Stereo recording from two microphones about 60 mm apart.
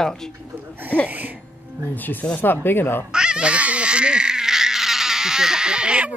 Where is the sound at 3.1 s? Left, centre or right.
Centre.